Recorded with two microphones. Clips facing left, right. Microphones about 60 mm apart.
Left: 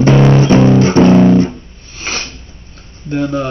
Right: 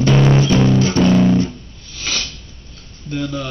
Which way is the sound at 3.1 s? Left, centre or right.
Left.